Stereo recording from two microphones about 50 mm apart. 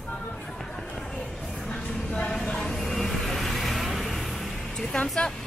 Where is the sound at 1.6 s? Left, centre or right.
Centre.